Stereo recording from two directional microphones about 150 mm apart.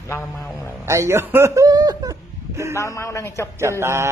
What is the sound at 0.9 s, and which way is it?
Chuckle, 20° right (ahead or behind).